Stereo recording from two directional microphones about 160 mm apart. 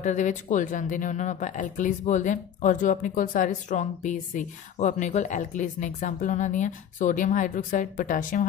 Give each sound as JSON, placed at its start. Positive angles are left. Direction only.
{"t": 0.0, "sound": "speech", "side_deg": 50}